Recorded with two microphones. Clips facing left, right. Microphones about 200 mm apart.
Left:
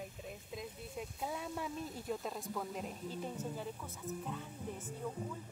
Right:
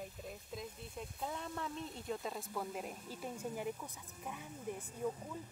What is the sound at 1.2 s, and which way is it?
Speech, 10° left (ahead or behind).